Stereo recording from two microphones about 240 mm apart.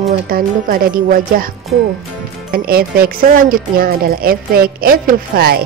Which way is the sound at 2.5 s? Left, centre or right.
Right.